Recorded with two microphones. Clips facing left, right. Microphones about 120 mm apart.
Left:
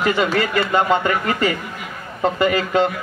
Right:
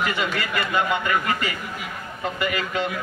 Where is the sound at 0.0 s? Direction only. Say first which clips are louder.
Left 7 dB; 35° left (ahead or behind).